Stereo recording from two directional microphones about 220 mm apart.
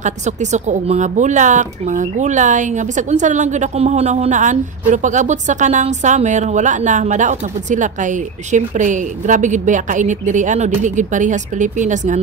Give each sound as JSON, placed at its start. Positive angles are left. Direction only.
{"t": 0.0, "sound": "speech", "side_deg": -30}